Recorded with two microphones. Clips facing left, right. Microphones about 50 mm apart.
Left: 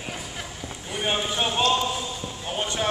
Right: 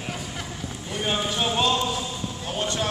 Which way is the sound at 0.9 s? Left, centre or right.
Centre.